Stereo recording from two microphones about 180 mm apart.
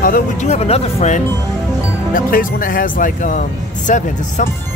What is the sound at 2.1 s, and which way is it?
Speech, 50° left (ahead or behind).